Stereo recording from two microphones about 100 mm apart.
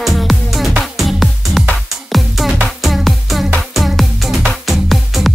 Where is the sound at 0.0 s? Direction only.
Centre (ahead or behind).